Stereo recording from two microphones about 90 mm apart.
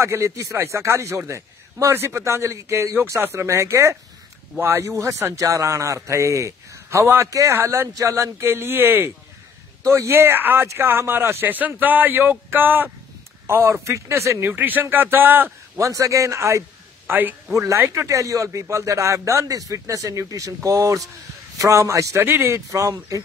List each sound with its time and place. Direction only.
0.0 s a man's voice: 35° right (ahead or behind)
15.8 s a man's voice: 35° right (ahead or behind)
17.1 s speech: 20° right (ahead or behind)
17.6 s a man's voice: 30° right (ahead or behind)
22.7 s a man's voice: 35° right (ahead or behind)